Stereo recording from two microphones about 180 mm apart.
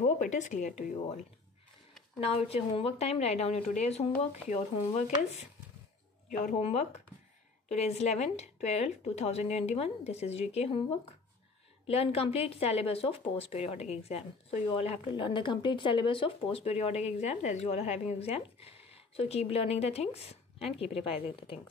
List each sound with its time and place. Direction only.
0.0 s speech: 40° left (ahead or behind)